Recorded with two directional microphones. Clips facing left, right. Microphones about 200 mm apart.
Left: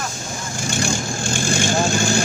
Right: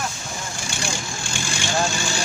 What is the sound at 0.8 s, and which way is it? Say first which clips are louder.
Vehicle: left 7 dB; 45° left (ahead or behind).